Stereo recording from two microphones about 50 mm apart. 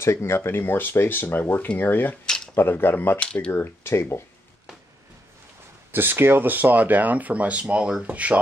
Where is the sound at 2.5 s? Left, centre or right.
Left.